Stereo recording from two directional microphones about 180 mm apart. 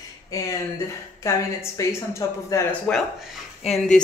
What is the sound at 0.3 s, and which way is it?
A woman's voice, 20° left (ahead or behind).